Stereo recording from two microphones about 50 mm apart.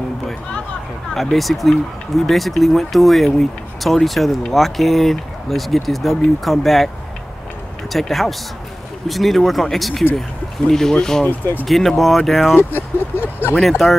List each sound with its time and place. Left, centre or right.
1.1 s speech: centre
7.9 s speech: centre
11.2 s speech: left
11.6 s speech: centre
12.5 s speech: left
13.6 s speech: centre